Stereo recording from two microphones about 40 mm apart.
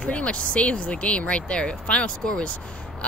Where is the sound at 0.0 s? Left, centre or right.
Left.